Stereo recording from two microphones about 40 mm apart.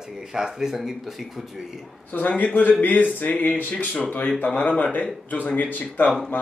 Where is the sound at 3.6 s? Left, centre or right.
Left.